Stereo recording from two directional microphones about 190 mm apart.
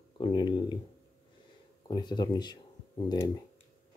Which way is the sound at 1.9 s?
20° left (ahead or behind).